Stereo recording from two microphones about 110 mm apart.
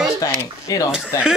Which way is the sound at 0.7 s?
35° left (ahead or behind).